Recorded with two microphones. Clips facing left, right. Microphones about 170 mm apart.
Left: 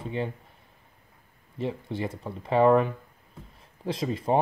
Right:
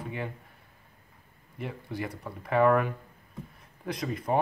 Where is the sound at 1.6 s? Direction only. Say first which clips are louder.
Left 5 dB; 25° left (ahead or behind).